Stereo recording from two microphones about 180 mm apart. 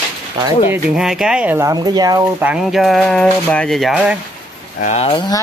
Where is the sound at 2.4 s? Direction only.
5° right (ahead or behind).